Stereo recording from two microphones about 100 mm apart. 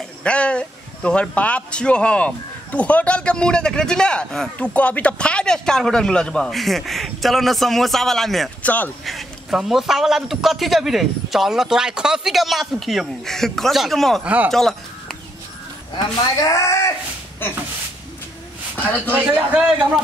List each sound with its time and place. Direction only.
0.2 s a man's voice: 10° left (ahead or behind)
8.6 s speech: 15° left (ahead or behind)
9.0 s a man's voice: centre (ahead or behind)
14.2 s speech: 15° right (ahead or behind)
14.5 s speech: 5° left (ahead or behind)
16.4 s speech: 30° left (ahead or behind)
19.0 s a man's voice: 20° right (ahead or behind)